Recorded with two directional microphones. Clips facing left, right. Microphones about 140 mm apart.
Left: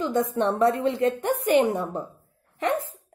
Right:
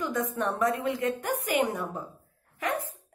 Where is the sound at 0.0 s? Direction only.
30° left (ahead or behind).